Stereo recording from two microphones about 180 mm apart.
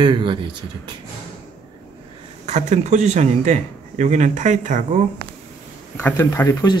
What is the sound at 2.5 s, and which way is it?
A man's voice, 40° right (ahead or behind).